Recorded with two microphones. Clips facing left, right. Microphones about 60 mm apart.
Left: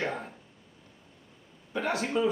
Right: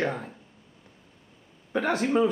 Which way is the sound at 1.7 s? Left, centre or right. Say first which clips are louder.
Right 5 dB; right.